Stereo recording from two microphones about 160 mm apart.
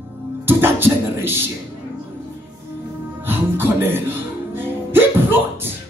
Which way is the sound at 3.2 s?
15° right (ahead or behind).